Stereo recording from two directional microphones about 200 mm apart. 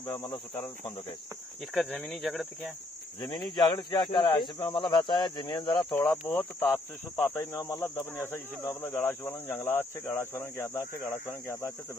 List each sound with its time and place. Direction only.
0.0 s speech: 15° left (ahead or behind)
1.7 s speech: 5° left (ahead or behind)
3.5 s speech: 20° left (ahead or behind)
6.0 s speech: 10° left (ahead or behind)